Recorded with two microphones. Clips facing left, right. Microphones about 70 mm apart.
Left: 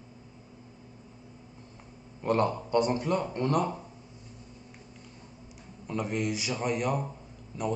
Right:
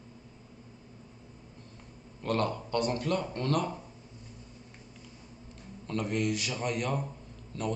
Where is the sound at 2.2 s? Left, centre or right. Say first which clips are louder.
Left 4 dB; centre.